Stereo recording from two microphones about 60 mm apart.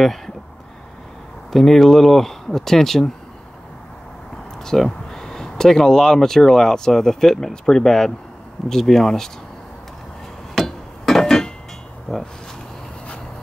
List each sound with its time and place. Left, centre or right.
1.5 s speech: centre
4.6 s speech: centre
10.5 s hammer: centre
12.1 s speech: centre